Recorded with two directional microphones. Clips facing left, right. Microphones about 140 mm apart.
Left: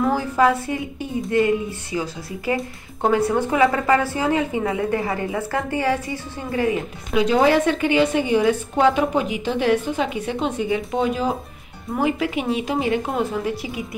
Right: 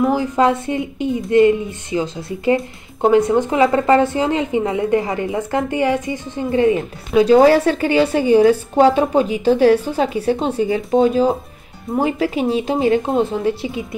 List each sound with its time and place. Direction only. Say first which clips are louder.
0.0 s a woman's voice: right 3 dB; 20° right (ahead or behind)
7.2 s a woman's voice: right 6 dB; 35° right (ahead or behind)